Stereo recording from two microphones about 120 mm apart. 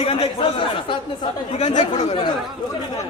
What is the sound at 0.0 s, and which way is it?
Speech, 55° left (ahead or behind).